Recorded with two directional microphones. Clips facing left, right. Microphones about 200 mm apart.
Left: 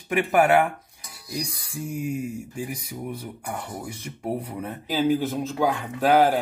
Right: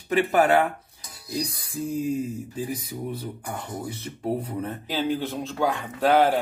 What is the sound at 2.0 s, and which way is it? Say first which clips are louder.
Speech: right 2 dB; 10° left (ahead or behind).